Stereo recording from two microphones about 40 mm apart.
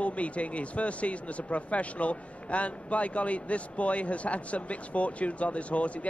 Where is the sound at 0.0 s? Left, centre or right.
Left.